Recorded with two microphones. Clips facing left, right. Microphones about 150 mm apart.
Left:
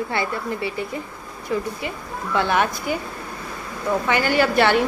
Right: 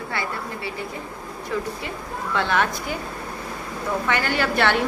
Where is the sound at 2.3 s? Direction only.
10° left (ahead or behind).